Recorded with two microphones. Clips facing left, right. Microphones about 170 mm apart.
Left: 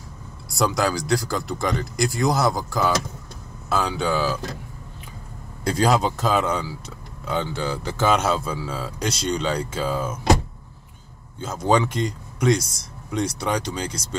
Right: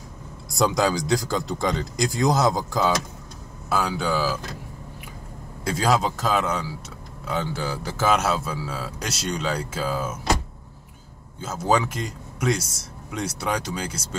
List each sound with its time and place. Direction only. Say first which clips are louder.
0.6 s speech: right 1 dB; 20° right (ahead or behind); by 4.4 s 5° right (ahead or behind)
5.6 s speech: left 2 dB; centre (ahead or behind)
11.3 s speech: left 2 dB; 5° right (ahead or behind)